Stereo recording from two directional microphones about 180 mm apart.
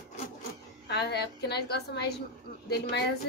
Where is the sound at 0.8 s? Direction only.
65° left (ahead or behind).